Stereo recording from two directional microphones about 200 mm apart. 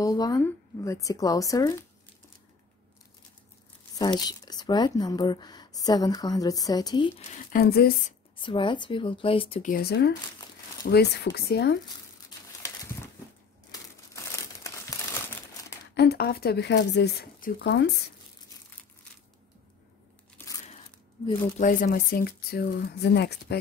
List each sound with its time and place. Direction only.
0.0 s speech: 20° left (ahead or behind)
4.0 s speech: 20° left (ahead or behind)
7.2 s speech: 50° left (ahead or behind)
8.4 s speech: 25° left (ahead or behind)
9.7 s speech: 50° left (ahead or behind)
13.7 s crumpling: 15° left (ahead or behind)
15.9 s speech: 55° left (ahead or behind)
21.5 s speech: 45° left (ahead or behind)